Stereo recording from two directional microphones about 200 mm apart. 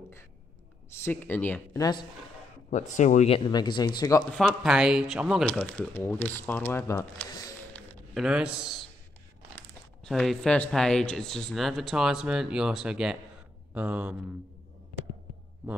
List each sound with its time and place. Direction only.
1.0 s speech: 10° left (ahead or behind)
2.7 s speech: 40° left (ahead or behind); by 4.2 s 20° left (ahead or behind)
4.3 s speech: centre (ahead or behind)
5.6 s speech: 10° left (ahead or behind)
7.7 s a sound: 5° left (ahead or behind)
10.0 s speech: centre (ahead or behind)